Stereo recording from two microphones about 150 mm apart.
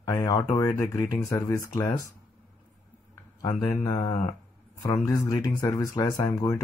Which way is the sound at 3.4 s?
25° left (ahead or behind).